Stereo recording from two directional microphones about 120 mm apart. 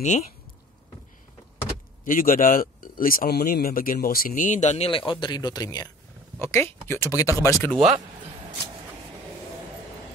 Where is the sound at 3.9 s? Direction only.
90° left.